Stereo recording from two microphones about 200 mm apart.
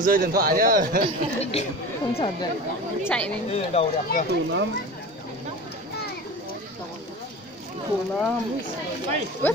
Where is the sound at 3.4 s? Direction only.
30° left (ahead or behind).